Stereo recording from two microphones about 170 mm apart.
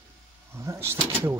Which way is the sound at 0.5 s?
15° right (ahead or behind).